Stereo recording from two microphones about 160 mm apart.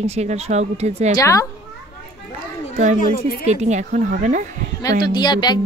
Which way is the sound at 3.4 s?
45° right (ahead or behind).